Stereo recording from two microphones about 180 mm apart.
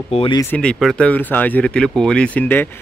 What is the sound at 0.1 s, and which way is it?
Speech, 30° left (ahead or behind).